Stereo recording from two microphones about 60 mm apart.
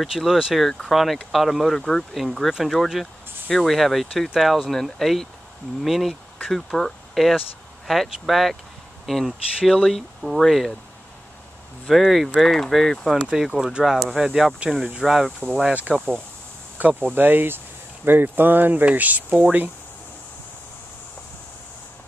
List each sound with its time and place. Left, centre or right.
0.0 s speech: centre
11.9 s speech: centre
13.1 s speech: centre
15.7 s speech: right